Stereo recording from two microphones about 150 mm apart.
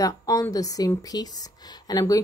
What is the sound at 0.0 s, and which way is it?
Speech, 25° left (ahead or behind).